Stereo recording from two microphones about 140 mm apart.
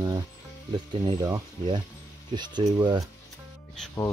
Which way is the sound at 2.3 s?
30° right (ahead or behind).